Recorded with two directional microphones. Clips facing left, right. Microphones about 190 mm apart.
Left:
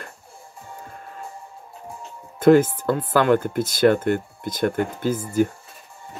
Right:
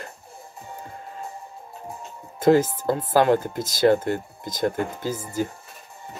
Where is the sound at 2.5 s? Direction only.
60° left (ahead or behind).